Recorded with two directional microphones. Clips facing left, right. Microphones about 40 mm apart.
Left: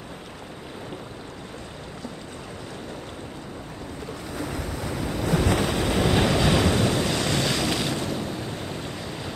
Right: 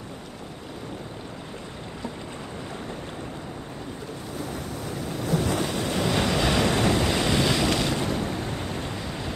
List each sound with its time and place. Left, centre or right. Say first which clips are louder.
5.2 s waves: left 2 dB; left
5.9 s waves: left 3 dB; centre
6.3 s waves: left 1 dB; centre